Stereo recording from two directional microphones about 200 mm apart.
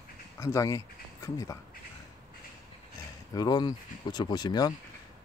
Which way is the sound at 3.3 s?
20° left (ahead or behind).